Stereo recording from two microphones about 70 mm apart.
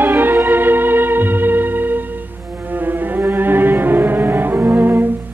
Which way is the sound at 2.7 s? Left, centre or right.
Right.